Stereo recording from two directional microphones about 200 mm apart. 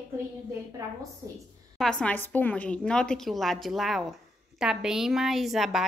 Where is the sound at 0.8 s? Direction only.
15° right (ahead or behind).